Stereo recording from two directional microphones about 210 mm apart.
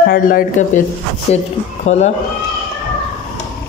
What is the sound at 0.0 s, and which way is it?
Speech, 45° left (ahead or behind).